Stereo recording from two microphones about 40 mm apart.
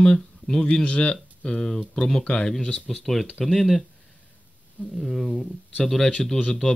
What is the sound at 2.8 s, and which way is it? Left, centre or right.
Speech, centre.